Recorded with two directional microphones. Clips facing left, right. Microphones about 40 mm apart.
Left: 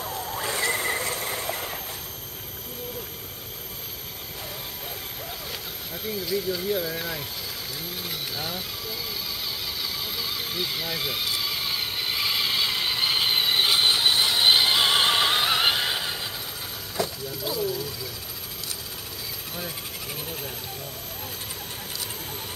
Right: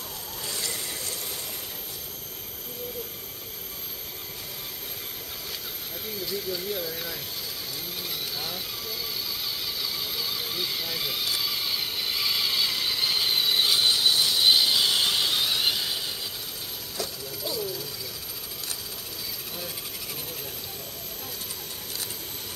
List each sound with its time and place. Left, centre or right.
0.0 s vehicle: left
6.3 s speech: centre
9.8 s a sound: centre; by 17.1 s left
17.5 s speech: centre